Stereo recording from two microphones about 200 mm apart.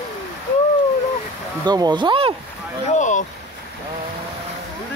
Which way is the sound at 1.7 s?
20° right (ahead or behind).